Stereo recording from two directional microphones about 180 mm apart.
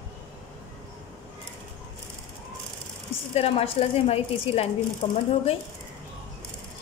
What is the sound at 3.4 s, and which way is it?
A woman's voice, 35° left (ahead or behind).